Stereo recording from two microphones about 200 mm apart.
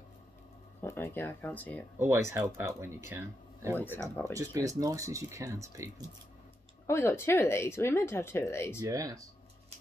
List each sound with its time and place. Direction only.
0.7 s speech: 10° left (ahead or behind)
2.0 s speech: 15° right (ahead or behind)
3.7 s speech: 10° left (ahead or behind)
4.2 s speech: 15° right (ahead or behind)
6.9 s speech: 10° left (ahead or behind)
8.8 s speech: 15° right (ahead or behind)